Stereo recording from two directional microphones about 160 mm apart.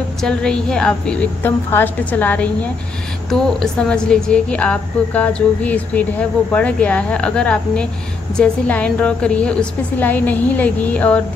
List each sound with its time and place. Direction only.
0.2 s a woman's voice: 5° left (ahead or behind)